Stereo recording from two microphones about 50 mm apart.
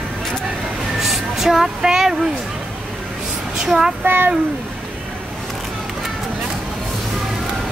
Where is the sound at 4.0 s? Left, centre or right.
Right.